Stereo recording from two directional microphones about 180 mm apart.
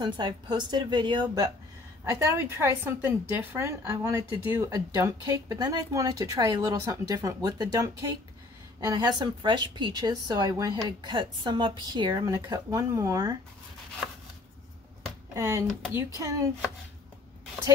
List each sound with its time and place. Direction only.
0.0 s a woman's voice: 25° right (ahead or behind)
15.3 s a woman's voice: 15° right (ahead or behind)